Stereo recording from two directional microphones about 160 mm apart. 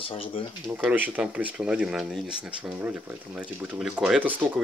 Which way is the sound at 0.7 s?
10° right (ahead or behind).